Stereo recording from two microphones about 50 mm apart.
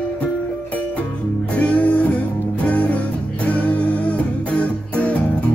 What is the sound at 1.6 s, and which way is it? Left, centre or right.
Music, left.